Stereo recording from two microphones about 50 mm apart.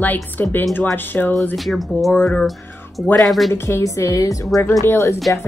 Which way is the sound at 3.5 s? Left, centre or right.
Left.